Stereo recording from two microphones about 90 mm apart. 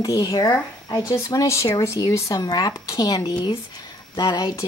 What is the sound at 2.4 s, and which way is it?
Speech, 50° left (ahead or behind).